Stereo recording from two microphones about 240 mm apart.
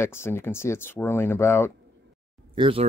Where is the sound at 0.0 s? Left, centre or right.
Centre.